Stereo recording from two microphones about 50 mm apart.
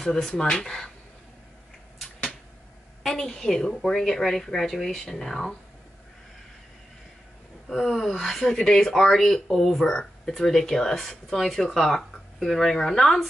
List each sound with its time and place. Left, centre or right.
0.0 s speech: centre
3.0 s speech: centre
5.0 s speech: centre
7.6 s a sound: centre
8.0 s speech: centre